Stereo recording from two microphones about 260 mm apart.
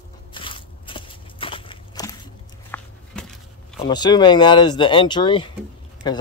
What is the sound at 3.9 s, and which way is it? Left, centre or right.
Speech, centre.